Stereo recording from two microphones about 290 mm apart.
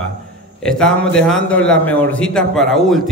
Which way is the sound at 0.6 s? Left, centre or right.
Centre.